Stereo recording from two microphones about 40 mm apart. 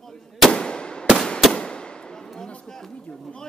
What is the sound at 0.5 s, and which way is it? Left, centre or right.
Firecracker, left.